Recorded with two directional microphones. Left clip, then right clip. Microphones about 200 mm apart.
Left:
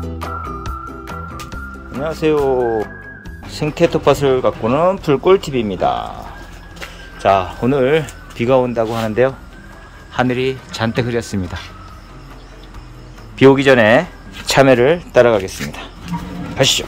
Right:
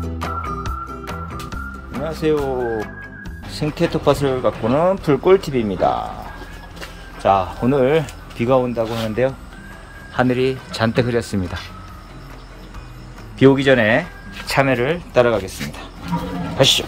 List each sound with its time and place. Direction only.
0.0 s music: centre (ahead or behind)
2.0 s speech: 15° left (ahead or behind)
3.4 s speech: 15° left (ahead or behind)
7.2 s speech: 10° left (ahead or behind)
10.1 s speech: 5° left (ahead or behind)
13.4 s speech: 15° left (ahead or behind)
14.5 s speech: 35° left (ahead or behind)
15.1 s speech: 15° left (ahead or behind)
16.5 s speech: centre (ahead or behind)